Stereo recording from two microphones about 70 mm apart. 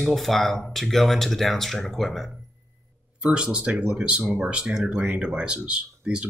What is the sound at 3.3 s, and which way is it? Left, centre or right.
Speech, centre.